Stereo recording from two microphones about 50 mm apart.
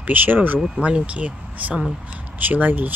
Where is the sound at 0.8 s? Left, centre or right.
Right.